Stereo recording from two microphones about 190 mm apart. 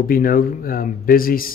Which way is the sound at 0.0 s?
50° left (ahead or behind).